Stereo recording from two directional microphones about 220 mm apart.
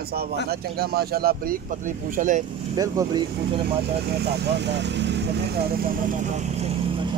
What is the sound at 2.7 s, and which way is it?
Speech, 15° right (ahead or behind).